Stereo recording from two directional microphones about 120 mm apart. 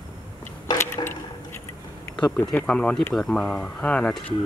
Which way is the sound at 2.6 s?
10° left (ahead or behind).